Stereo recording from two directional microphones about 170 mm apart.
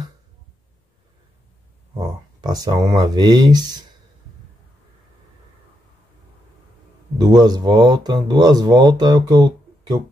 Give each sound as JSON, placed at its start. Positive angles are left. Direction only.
{"t": 2.0, "sound": "speech", "side_deg": -25}
{"t": 7.2, "sound": "speech", "side_deg": -25}